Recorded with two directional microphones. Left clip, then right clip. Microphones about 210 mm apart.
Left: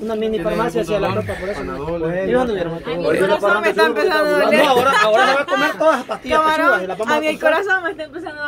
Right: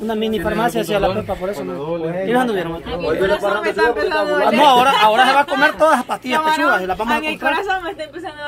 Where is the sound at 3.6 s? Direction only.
35° left (ahead or behind).